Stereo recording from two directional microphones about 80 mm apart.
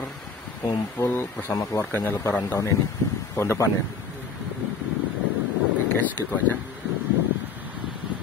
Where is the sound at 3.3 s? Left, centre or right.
Left.